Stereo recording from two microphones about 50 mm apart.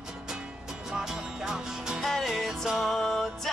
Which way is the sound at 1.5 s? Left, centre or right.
Centre.